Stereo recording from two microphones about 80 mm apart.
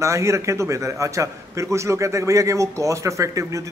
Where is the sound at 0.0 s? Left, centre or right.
Right.